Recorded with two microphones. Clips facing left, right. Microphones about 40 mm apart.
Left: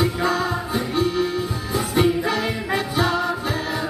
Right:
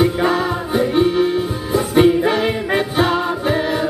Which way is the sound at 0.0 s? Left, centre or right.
Right.